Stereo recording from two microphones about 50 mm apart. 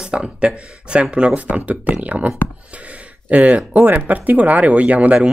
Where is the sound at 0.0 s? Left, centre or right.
Centre.